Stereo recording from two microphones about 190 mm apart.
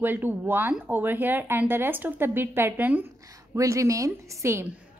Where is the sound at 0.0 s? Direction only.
10° right (ahead or behind).